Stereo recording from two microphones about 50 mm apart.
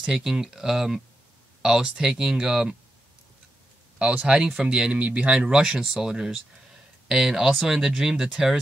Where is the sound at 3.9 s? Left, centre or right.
Centre.